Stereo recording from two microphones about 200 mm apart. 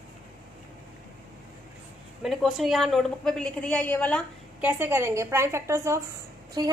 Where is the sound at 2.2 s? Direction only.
Centre (ahead or behind).